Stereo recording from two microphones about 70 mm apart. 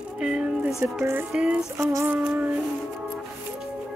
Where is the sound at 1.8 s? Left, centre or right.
Right.